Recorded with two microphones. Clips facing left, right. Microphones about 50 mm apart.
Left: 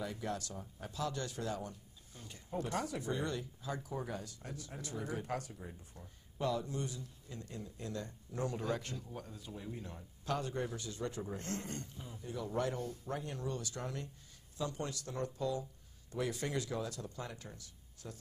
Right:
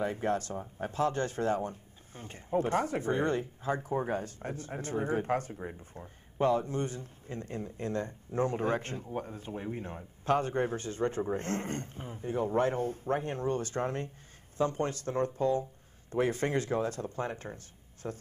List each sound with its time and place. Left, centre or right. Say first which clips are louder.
0.0 s speech: right 9 dB; right